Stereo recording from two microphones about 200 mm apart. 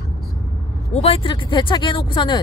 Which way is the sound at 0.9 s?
30° left (ahead or behind).